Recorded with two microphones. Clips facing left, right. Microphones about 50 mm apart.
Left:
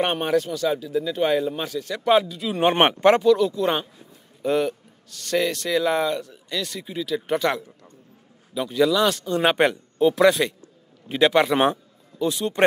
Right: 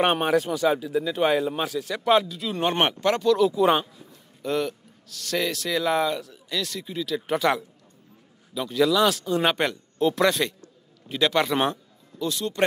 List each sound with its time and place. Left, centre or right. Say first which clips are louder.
0.0 s speech: right 1 dB; centre
2.8 s speech: left 7 dB; left
3.3 s speech: right 2 dB; centre
4.4 s speech: left 4 dB; centre
11.1 s a man's voice: left 4 dB; centre